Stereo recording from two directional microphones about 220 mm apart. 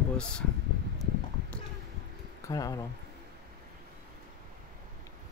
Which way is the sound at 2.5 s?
15° left (ahead or behind).